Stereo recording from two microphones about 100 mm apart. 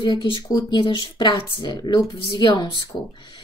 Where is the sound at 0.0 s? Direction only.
50° left (ahead or behind).